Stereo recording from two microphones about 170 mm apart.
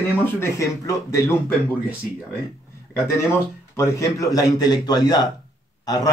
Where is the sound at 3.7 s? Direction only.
15° left (ahead or behind).